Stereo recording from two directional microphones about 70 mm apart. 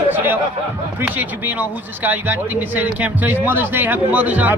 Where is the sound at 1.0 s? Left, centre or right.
Right.